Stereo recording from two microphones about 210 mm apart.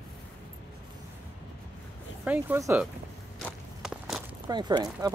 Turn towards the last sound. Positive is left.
turn(degrees=-20)  # may be behind; listen again after turning